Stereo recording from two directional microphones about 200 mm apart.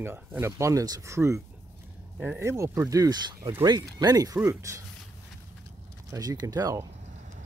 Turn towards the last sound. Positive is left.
turn(degrees=-15)  # may be behind; listen again after turning